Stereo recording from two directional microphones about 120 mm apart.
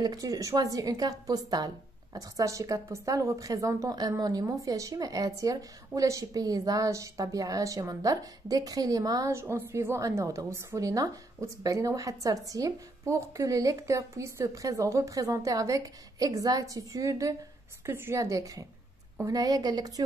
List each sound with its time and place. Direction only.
0.0 s a woman's voice: 30° right (ahead or behind)